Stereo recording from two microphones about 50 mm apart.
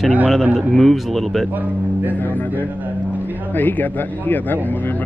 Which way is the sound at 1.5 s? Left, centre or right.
Right.